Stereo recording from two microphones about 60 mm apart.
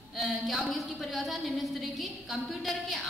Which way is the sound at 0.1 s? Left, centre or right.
Centre.